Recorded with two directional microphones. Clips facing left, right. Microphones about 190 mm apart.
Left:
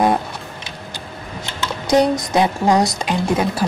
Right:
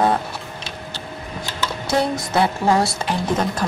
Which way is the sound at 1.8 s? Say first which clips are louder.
Left 6 dB; 15° left (ahead or behind).